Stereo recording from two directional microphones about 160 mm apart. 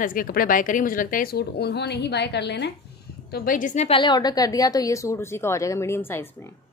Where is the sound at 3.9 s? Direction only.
30° left (ahead or behind).